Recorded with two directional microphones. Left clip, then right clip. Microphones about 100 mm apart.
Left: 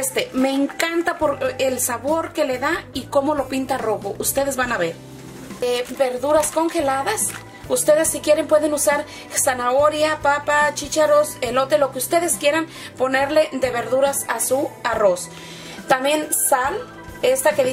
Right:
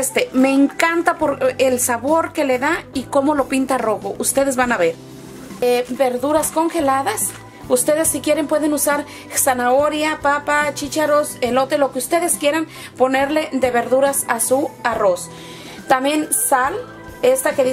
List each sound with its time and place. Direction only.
0.1 s a woman's voice: 45° right (ahead or behind)